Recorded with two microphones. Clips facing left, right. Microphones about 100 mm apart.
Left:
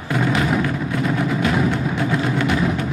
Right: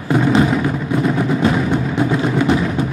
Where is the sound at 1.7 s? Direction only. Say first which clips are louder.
Right 4 dB; 20° right (ahead or behind).